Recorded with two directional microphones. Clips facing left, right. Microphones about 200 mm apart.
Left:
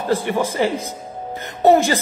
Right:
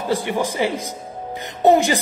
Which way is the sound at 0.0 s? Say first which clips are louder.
Left 2 dB; 15° right (ahead or behind).